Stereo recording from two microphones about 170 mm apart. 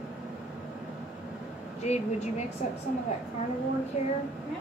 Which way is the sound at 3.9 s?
40° left (ahead or behind).